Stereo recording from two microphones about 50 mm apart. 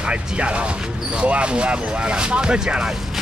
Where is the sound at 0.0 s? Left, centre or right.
Right.